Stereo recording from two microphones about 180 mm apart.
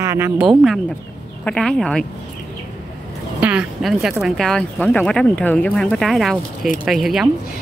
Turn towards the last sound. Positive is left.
turn(degrees=0)  # may be behind; listen again after turning